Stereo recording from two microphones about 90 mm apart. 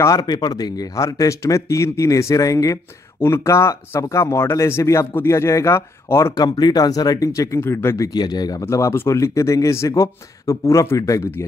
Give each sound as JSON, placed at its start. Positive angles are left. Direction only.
{"t": 0.0, "sound": "speech", "side_deg": 40}
{"t": 6.3, "sound": "speech", "side_deg": 50}
{"t": 8.1, "sound": "speech", "side_deg": 50}
{"t": 8.6, "sound": "speech", "side_deg": 30}